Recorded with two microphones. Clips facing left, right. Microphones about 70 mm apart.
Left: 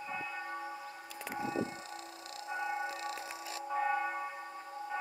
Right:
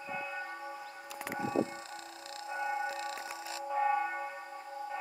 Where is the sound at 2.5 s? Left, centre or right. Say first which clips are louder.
Right 2 dB; right.